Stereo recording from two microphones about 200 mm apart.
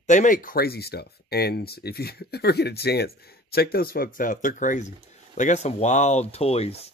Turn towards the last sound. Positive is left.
turn(degrees=30)  # may be behind; listen again after turning